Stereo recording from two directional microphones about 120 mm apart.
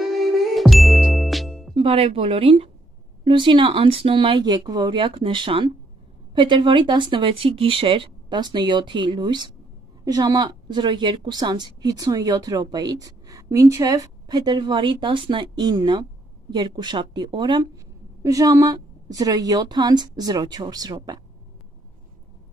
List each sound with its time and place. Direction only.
0.6 s music: centre (ahead or behind)
1.8 s a woman's voice: 50° right (ahead or behind); by 21.2 s 35° right (ahead or behind)